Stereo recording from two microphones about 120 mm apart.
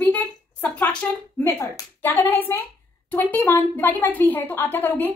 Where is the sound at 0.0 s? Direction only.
15° left (ahead or behind).